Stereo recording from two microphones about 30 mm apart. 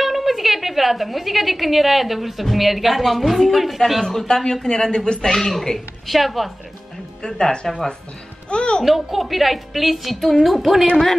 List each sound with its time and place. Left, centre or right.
0.0 s a woman's voice: centre
4.0 s speech: centre
4.6 s speech: left
5.2 s speech: centre
6.0 s a woman's voice: centre
7.2 s speech: left
8.5 s music: left
8.8 s a woman's voice: centre